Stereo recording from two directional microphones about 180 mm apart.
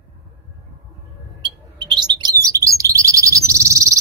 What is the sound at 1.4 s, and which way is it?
Bird, 25° right (ahead or behind).